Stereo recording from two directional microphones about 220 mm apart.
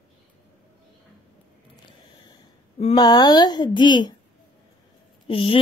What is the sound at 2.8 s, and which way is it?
Speech, 20° left (ahead or behind).